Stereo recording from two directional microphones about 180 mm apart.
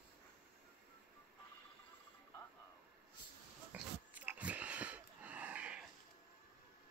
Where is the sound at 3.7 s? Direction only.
10° right (ahead or behind).